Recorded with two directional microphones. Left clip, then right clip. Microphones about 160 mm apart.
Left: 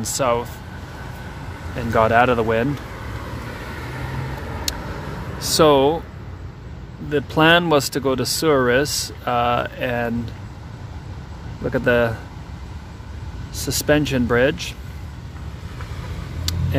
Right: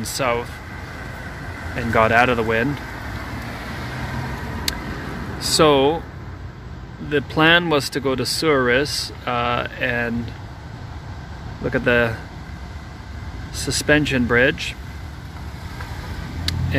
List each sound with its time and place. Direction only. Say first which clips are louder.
0.0 s speech: left 2 dB; 20° left (ahead or behind)
1.8 s speech: even; 10° left (ahead or behind)
4.7 s vehicle: right 2 dB; 10° left (ahead or behind)
5.4 s speech: left 1 dB; 10° left (ahead or behind)
7.1 s speech: even; 10° left (ahead or behind)
7.4 s speech: left 1 dB; 20° left (ahead or behind)
11.6 s speech: even; 10° left (ahead or behind)
13.6 s speech: right 1 dB; 10° left (ahead or behind)
16.5 s vehicle: right 1 dB; 10° left (ahead or behind)